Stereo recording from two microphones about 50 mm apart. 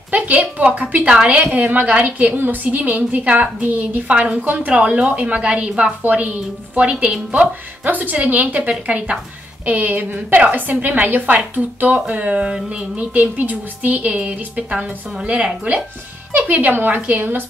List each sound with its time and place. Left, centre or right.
0.1 s a woman's voice: right
2.3 s a woman's voice: right; by 5.9 s centre
6.0 s speech: right
7.8 s a woman's voice: right; by 15.5 s centre
16.3 s a woman's voice: right